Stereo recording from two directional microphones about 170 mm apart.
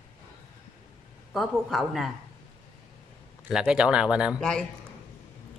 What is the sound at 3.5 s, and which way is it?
Speech, 5° right (ahead or behind).